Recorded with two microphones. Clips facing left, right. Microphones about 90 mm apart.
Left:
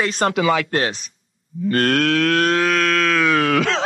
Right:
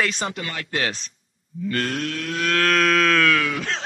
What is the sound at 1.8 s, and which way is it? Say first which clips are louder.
Livestock: left 10 dB; 80° left.